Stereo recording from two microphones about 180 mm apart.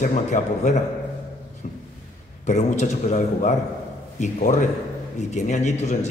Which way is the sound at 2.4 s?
40° left (ahead or behind).